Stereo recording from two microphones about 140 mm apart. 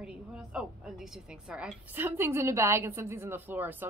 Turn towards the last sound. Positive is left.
turn(degrees=-15)  # may be behind; listen again after turning